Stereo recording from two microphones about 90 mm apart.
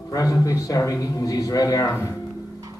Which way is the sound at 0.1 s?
40° left (ahead or behind).